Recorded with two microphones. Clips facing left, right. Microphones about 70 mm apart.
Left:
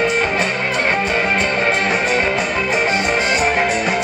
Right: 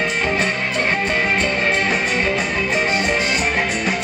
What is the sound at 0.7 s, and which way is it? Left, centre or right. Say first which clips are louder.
Music: left 3 dB; left.